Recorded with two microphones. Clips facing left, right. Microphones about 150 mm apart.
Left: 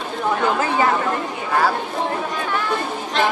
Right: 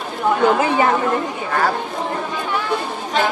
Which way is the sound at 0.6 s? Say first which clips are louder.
Right 3 dB; 20° right (ahead or behind).